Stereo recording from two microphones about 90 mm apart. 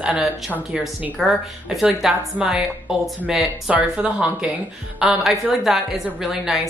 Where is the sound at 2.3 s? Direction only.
10° right (ahead or behind).